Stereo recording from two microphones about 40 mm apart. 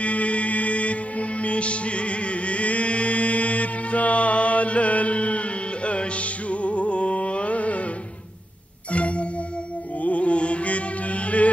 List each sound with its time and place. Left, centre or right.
0.0 s music: left
8.9 s music: left